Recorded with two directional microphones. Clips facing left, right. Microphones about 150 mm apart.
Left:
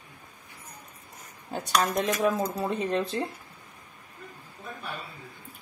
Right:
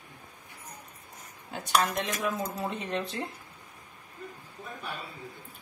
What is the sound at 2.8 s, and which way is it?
Speech, 35° left (ahead or behind).